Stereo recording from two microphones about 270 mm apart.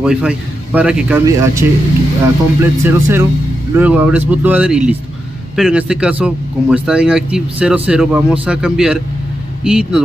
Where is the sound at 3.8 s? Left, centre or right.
Centre.